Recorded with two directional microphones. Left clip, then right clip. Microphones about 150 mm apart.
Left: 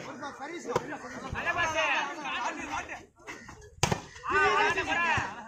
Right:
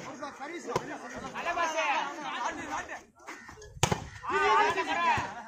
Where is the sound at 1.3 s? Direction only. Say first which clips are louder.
Left 1 dB; 55° right (ahead or behind).